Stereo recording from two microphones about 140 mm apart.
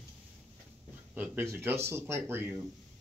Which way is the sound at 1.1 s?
15° right (ahead or behind).